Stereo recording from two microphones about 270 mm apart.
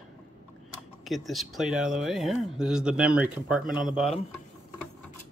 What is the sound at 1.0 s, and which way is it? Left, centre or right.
Speech, centre.